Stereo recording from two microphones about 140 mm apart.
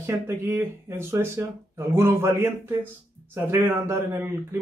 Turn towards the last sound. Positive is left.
turn(degrees=-20)  # may be behind; listen again after turning